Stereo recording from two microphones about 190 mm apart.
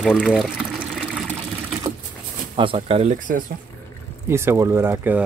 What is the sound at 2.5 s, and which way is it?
Speech, 25° right (ahead or behind).